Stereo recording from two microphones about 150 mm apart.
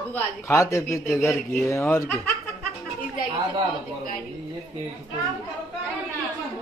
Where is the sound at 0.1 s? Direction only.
20° left (ahead or behind).